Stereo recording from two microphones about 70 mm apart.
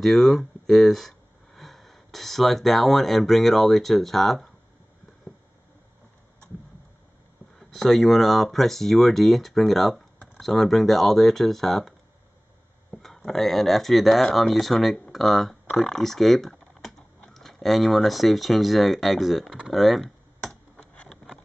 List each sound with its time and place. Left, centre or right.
0.0 s speech: centre
7.5 s speech: centre
12.9 s speech: centre
19.7 s computer keyboard: centre
20.7 s a sound: centre